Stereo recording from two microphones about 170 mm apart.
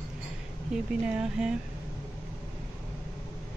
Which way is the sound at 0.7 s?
5° right (ahead or behind).